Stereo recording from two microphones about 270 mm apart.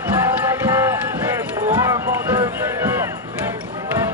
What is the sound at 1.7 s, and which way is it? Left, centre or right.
Music, centre.